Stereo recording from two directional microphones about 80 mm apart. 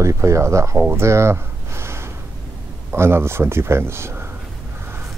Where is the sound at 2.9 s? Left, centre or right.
Right.